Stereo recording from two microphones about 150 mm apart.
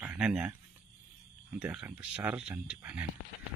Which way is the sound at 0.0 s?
5° right (ahead or behind).